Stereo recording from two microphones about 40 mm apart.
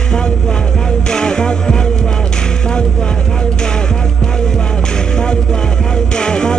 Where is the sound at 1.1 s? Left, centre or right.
Centre.